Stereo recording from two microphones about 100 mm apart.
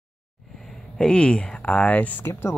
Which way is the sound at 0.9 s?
10° left (ahead or behind).